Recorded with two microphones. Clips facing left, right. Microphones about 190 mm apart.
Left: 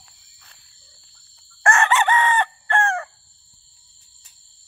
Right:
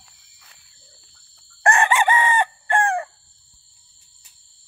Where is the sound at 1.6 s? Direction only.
15° right (ahead or behind).